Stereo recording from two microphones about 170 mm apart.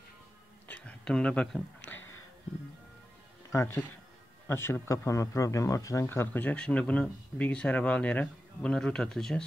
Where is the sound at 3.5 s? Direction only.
15° left (ahead or behind).